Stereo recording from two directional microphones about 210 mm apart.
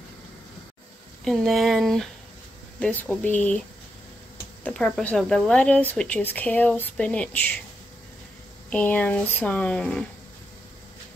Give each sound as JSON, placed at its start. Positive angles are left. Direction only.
{"t": 1.2, "sound": "speech", "side_deg": 0}
{"t": 4.6, "sound": "speech", "side_deg": 5}
{"t": 8.6, "sound": "speech", "side_deg": 5}